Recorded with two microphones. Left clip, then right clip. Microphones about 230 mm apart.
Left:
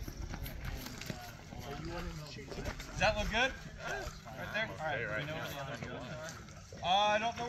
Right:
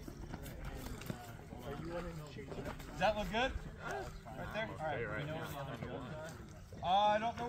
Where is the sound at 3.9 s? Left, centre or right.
Left.